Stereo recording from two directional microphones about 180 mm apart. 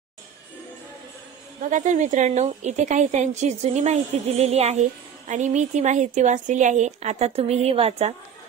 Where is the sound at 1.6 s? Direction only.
45° right (ahead or behind).